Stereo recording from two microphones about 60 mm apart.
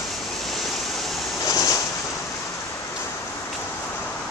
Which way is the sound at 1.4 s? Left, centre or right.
Left.